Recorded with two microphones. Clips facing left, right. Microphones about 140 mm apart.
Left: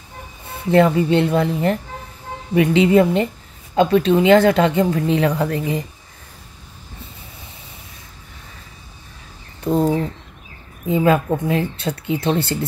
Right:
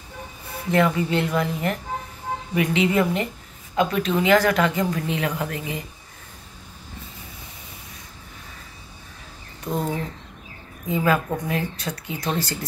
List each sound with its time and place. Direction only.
0.7 s a woman's voice: 30° left (ahead or behind)
10.9 s speech: 25° left (ahead or behind)